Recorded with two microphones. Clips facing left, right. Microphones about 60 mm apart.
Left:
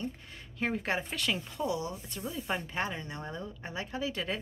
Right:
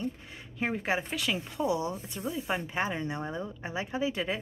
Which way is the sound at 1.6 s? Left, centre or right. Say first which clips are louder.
Right 4 dB; right.